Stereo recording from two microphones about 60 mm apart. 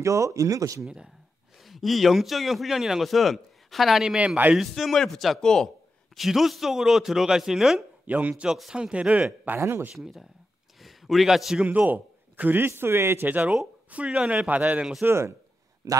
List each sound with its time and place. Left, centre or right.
0.0 s speech: right
0.8 s a man's voice: centre
6.1 s a man's voice: centre
8.1 s speech: right
9.6 s speech: right
9.9 s a man's voice: centre
10.8 s a sound: centre
11.6 s a man's voice: right
13.3 s speech: right
15.0 s speech: right
15.8 s speech: right